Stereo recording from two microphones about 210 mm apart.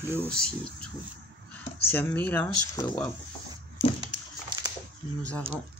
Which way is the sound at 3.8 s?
15° left (ahead or behind).